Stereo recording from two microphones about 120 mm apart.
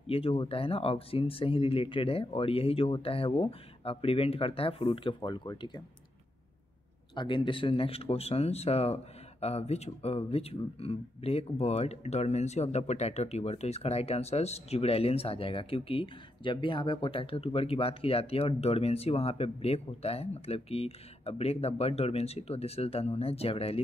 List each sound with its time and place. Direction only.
0.0 s speech: 55° left (ahead or behind)
7.2 s speech: 40° left (ahead or behind)